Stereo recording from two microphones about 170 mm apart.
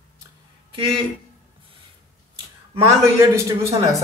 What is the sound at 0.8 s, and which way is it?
Speech, 30° right (ahead or behind).